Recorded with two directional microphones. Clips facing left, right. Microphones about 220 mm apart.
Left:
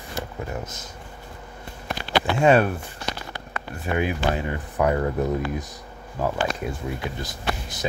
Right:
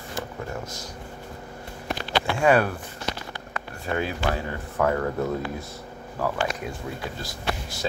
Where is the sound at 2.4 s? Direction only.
25° left (ahead or behind).